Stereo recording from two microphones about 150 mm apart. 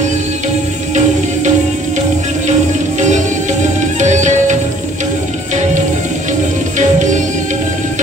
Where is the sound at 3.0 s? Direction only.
50° right (ahead or behind).